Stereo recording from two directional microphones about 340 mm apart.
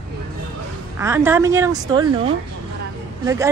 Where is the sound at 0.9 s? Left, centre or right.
Centre.